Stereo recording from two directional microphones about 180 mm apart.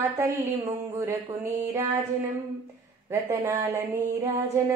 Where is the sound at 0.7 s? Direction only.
15° right (ahead or behind).